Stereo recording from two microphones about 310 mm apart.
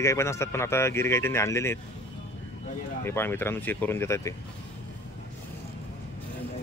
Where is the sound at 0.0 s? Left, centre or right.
Centre.